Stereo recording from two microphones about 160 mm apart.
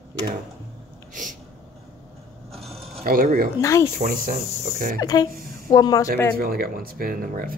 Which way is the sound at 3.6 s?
20° left (ahead or behind).